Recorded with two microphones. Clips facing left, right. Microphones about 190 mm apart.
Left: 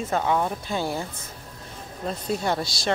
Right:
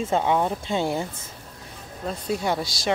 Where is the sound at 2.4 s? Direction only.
10° right (ahead or behind).